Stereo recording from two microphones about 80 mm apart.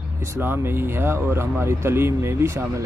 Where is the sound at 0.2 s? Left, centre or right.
Right.